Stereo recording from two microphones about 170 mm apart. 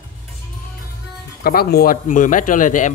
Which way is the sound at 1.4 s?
60° left (ahead or behind).